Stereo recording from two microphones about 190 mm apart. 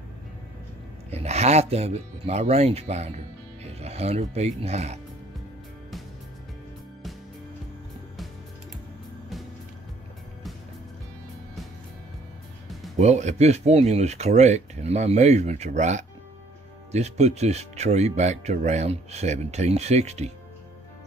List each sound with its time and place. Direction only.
1.1 s speech: 35° right (ahead or behind)
12.9 s speech: 35° right (ahead or behind)